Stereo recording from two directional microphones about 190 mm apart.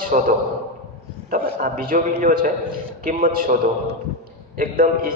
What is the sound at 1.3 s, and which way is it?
A man's voice, 45° right (ahead or behind).